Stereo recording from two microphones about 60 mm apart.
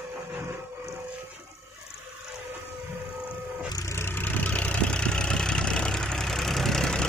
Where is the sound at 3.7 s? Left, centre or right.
Left.